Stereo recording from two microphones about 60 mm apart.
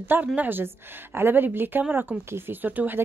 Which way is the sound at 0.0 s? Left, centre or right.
Right.